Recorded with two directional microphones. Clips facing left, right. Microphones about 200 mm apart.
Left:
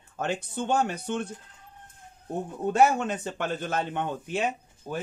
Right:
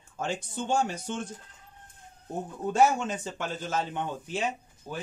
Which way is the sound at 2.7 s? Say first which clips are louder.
Left 2 dB; 60° left (ahead or behind).